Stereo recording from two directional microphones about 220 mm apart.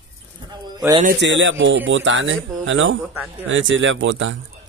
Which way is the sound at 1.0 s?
55° right (ahead or behind).